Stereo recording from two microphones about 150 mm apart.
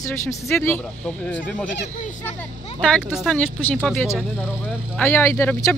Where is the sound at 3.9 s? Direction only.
15° left (ahead or behind).